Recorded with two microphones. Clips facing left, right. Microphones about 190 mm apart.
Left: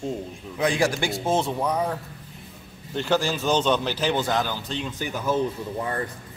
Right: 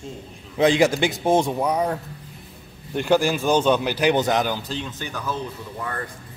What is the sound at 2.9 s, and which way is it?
A man's voice, 15° right (ahead or behind).